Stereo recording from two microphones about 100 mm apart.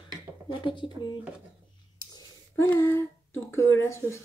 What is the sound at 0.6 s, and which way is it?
Speech, 55° left (ahead or behind).